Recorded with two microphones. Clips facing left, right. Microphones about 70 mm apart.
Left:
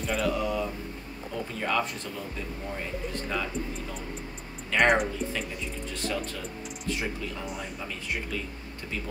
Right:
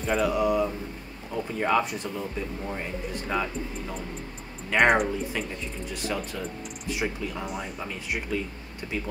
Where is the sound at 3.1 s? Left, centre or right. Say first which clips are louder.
Right 4 dB; centre.